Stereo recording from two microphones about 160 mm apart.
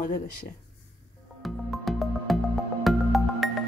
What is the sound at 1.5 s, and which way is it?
Music, centre (ahead or behind).